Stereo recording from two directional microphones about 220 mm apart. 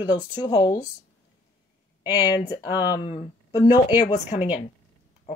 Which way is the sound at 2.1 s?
15° left (ahead or behind).